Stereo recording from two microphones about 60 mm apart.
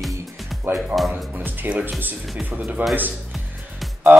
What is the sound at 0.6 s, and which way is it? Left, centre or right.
Speech, right.